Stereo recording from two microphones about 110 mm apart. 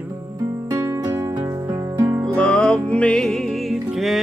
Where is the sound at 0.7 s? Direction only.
30° right (ahead or behind).